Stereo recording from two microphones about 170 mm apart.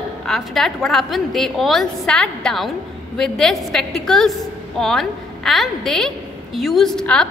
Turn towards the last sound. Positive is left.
turn(degrees=5)  # may be behind; listen again after turning